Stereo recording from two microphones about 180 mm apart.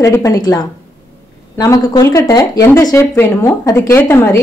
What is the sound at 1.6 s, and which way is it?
A woman's voice, 20° left (ahead or behind).